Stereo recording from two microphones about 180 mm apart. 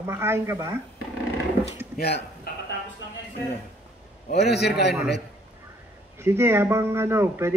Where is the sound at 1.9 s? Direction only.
60° left (ahead or behind).